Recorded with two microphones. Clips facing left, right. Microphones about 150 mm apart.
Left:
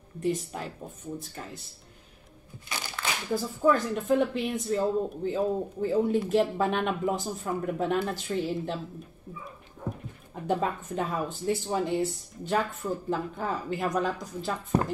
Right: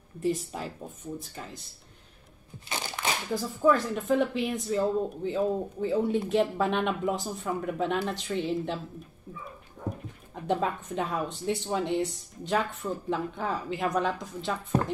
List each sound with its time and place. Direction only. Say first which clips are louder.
0.2 s speech: even; centre (ahead or behind)
3.0 s a sound: right 2 dB; 20° right (ahead or behind)
3.3 s speech: even; centre (ahead or behind)
10.4 s speech: even; centre (ahead or behind)